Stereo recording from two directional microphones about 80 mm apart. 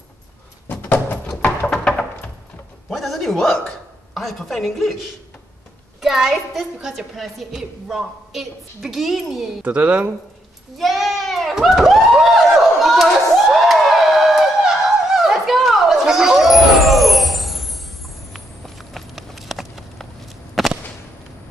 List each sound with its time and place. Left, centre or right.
0.7 s a sound: left
1.7 s music: centre
2.9 s a sound: centre
4.1 s a woman's voice: centre
5.9 s a woman's voice: centre
9.6 s speech: centre
10.8 s a sound: centre
18.3 s walk: centre
20.6 s whip: centre